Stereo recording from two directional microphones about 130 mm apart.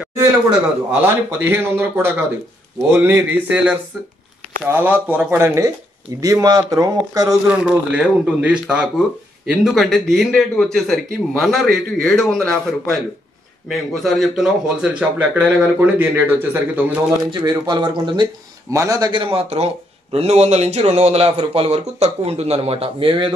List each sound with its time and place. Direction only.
1.0 s speech: 15° right (ahead or behind)
7.4 s a man's voice: 10° right (ahead or behind)
17.3 s a man's voice: 35° right (ahead or behind)